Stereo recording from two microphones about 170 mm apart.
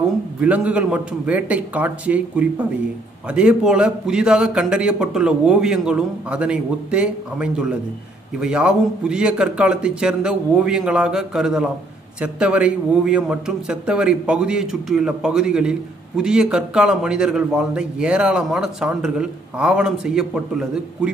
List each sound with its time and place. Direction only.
0.4 s a man's voice: 10° right (ahead or behind)